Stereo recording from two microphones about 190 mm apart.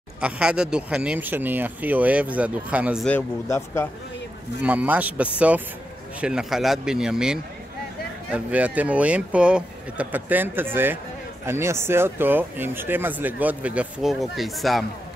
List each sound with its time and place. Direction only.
0.2 s speech: 5° right (ahead or behind)
3.1 s speech: 10° left (ahead or behind)
4.6 s speech: 10° right (ahead or behind)